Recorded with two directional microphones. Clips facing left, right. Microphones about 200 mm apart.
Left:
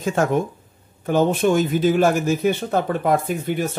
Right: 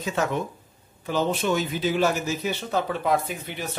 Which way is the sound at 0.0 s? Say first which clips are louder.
Left 6 dB; 50° left (ahead or behind).